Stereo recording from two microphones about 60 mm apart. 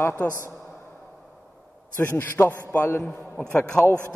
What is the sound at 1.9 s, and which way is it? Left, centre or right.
Speech, left.